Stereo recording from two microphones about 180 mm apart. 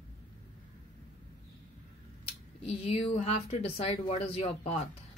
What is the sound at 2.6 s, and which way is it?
Speech, 35° left (ahead or behind).